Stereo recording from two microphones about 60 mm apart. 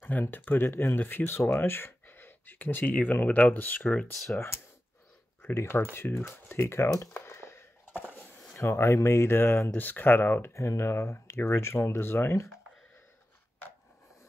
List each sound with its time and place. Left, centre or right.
0.0 s speech: left
4.1 s speech: centre
5.4 s speech: left
7.2 s a sound: left
8.5 s speech: left
9.7 s speech: left
10.5 s speech: left